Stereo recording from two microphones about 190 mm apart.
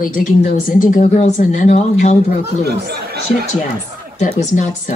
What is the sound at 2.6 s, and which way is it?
Speech, 60° right (ahead or behind).